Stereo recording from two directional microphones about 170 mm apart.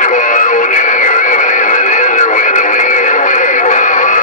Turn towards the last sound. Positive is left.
turn(degrees=50)  # may be behind; listen again after turning